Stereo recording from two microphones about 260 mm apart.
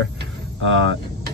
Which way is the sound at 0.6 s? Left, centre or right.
Right.